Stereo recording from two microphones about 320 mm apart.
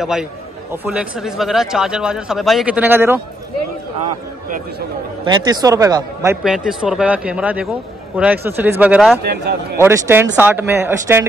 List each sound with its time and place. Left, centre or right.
0.0 s speech: centre
5.2 s a man's voice: centre
9.2 s speech: right
9.8 s a man's voice: centre